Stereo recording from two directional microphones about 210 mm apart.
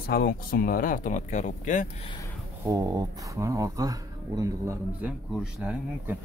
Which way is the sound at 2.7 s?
15° right (ahead or behind).